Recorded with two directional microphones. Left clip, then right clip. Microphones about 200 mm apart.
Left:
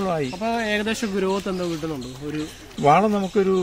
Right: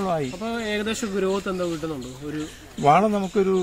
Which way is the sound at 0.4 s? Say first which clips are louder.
Left 4 dB; 15° left (ahead or behind).